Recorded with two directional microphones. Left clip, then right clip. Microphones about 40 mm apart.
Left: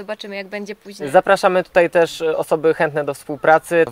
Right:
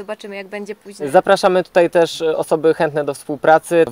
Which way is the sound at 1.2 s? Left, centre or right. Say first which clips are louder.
Right 1 dB; centre.